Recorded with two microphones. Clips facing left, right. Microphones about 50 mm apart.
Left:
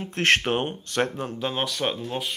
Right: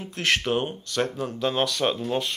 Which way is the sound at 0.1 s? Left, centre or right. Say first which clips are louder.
Left 2 dB; left.